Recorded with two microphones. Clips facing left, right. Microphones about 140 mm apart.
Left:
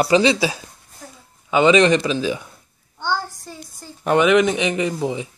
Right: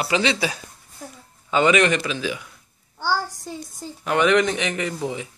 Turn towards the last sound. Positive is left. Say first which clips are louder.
# left 4 dB
turn(degrees=20)  # may be behind; listen again after turning